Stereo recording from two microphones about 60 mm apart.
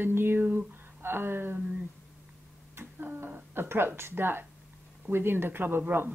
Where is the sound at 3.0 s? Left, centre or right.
Right.